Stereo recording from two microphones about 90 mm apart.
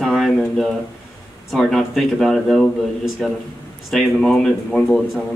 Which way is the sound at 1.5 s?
5° left (ahead or behind).